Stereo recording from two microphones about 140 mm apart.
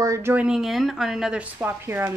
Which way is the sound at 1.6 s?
15° right (ahead or behind).